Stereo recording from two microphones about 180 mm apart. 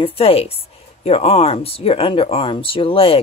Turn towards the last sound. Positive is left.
turn(degrees=30)  # may be behind; listen again after turning